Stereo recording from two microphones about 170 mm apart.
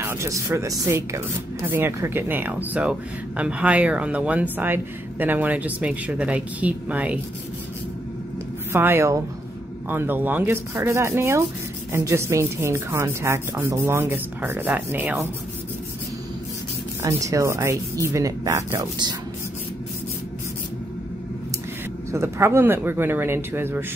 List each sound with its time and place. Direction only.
0.0 s speech: 15° right (ahead or behind)
8.7 s speech: 15° right (ahead or behind)
17.2 s speech: 20° right (ahead or behind)
22.1 s speech: 15° right (ahead or behind)